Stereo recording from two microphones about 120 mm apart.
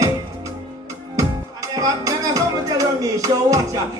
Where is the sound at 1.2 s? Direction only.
30° right (ahead or behind).